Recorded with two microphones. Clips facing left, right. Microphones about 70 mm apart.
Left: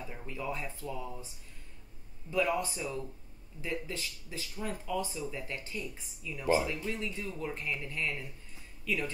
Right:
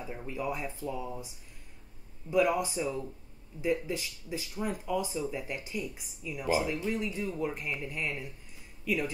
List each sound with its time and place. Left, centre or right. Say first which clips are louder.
0.0 s speech: right 4 dB; centre
2.3 s speech: right 4 dB; centre